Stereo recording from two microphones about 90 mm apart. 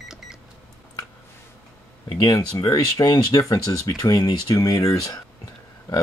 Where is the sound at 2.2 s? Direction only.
45° left (ahead or behind).